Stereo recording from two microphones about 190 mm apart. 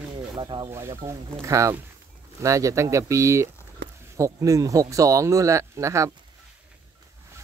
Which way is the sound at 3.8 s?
60° right (ahead or behind).